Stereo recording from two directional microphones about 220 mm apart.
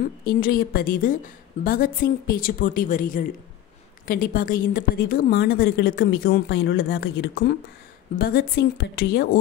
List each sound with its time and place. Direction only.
0.2 s a woman's voice: 40° left (ahead or behind)